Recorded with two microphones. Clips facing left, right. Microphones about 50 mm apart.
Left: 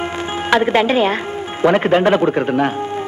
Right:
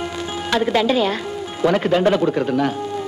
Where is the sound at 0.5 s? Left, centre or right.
Left.